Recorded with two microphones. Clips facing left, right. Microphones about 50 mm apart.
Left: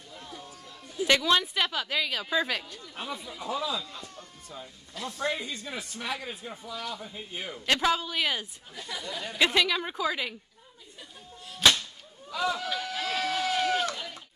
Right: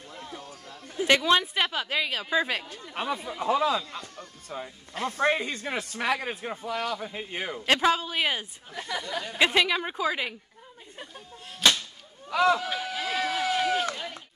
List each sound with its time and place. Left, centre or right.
1.0 s a woman's voice: right
2.9 s speech: right
3.9 s a sound: right
4.9 s speech: right
7.5 s a woman's voice: right
8.7 s speech: right
9.3 s a woman's voice: centre
12.3 s speech: right
12.5 s a sound: centre